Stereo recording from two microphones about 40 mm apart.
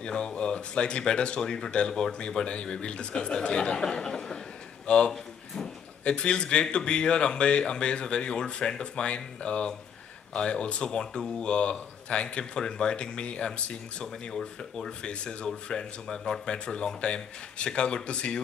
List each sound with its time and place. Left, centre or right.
0.0 s speech: centre
14.0 s speech: centre